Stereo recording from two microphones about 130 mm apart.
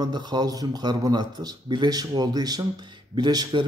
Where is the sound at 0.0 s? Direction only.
35° right (ahead or behind).